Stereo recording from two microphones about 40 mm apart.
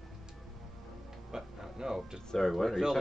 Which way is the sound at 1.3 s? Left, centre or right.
Centre.